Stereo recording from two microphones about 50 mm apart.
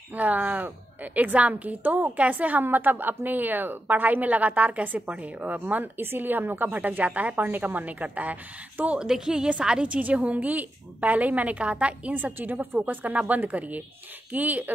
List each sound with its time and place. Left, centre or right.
0.1 s a woman's voice: right
5.9 s a woman's voice: right
9.0 s a woman's voice: centre; by 14.7 s right